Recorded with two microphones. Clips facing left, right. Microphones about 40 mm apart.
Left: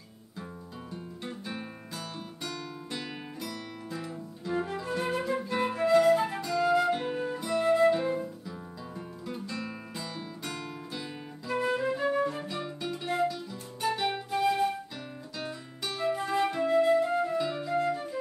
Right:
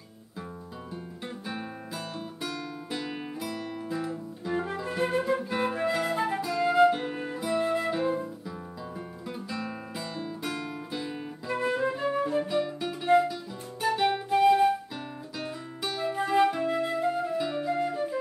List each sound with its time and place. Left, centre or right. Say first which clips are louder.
1.2 s guitar: right 2 dB; centre
5.2 s flute: right 2 dB; centre
6.9 s music: even; centre
7.9 s flute: even; centre
9.3 s music: right 2 dB; centre
14.1 s flute: right 6 dB; centre
15.3 s music: right 1 dB; centre
16.2 s flute: right 8 dB; centre
17.7 s music: right 1 dB; centre